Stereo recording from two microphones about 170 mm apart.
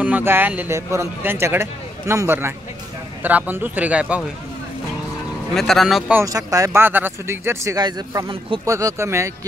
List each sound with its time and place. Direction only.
0.0 s speech: 10° right (ahead or behind)
5.5 s speech: centre (ahead or behind)
6.1 s speech: 20° right (ahead or behind)